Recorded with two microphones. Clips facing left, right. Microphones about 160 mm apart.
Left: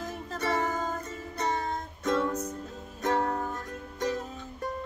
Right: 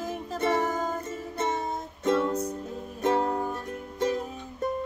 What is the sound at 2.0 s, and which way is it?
Music, 20° right (ahead or behind).